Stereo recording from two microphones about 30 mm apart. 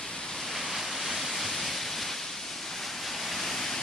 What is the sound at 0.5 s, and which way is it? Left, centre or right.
Pink noise, centre.